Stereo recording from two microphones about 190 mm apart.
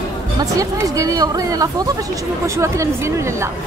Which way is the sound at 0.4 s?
20° right (ahead or behind).